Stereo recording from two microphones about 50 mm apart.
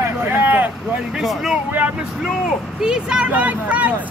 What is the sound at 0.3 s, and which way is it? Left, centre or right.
Vehicle, right.